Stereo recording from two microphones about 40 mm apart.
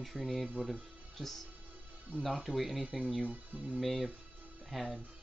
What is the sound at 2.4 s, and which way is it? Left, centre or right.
Speech, centre.